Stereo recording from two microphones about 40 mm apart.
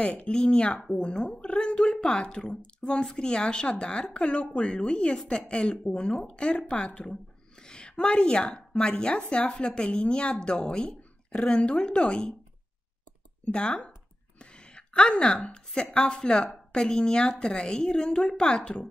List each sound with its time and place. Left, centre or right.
0.0 s a woman's voice: left
13.5 s a woman's voice: left
14.4 s a sound: left
15.5 s a woman's voice: left